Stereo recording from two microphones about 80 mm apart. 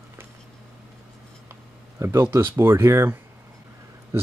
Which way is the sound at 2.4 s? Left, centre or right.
Right.